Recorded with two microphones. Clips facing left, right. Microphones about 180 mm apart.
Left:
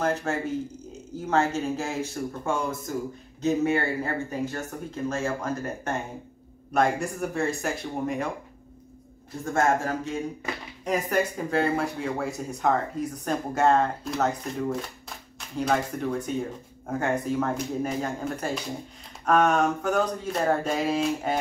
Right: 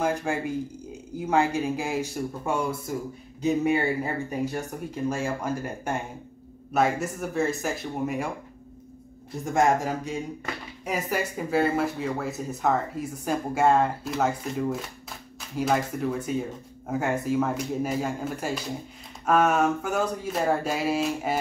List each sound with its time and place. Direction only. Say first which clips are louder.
0.0 s speech: even; 10° right (ahead or behind)
9.4 s speech: right 1 dB; 15° right (ahead or behind)